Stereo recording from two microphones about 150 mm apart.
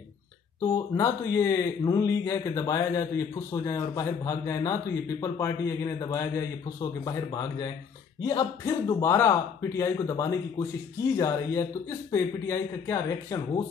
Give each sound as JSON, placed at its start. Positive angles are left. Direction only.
{"t": 0.6, "sound": "a man's voice", "side_deg": 20}